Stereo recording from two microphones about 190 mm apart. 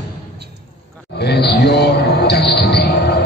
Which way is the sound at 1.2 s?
60° left (ahead or behind).